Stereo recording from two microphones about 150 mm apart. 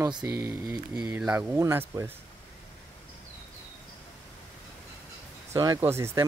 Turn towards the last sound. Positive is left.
turn(degrees=-15)  # may be behind; listen again after turning